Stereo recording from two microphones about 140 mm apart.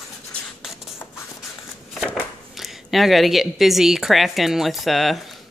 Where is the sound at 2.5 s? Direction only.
Centre (ahead or behind).